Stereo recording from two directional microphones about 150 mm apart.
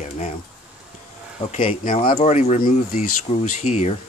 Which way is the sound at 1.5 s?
65° left (ahead or behind).